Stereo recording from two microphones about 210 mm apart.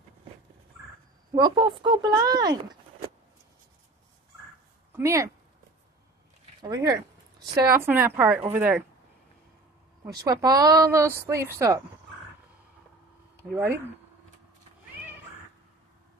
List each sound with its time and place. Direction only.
1.3 s speech: 20° right (ahead or behind)
4.9 s speech: 15° right (ahead or behind)
6.6 s a woman's voice: 20° right (ahead or behind)
10.2 s a woman's voice: 15° right (ahead or behind)
13.4 s speech: 10° right (ahead or behind)